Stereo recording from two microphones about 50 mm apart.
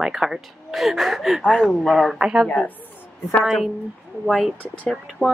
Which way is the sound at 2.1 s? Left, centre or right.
Centre.